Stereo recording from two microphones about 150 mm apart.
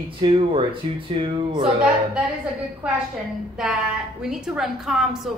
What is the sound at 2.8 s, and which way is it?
Speech, 10° right (ahead or behind).